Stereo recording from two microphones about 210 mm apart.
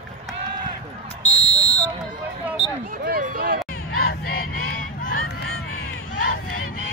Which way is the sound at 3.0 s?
45° right (ahead or behind).